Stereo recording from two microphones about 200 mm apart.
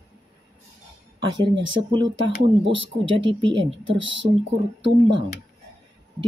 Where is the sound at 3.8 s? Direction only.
70° right (ahead or behind).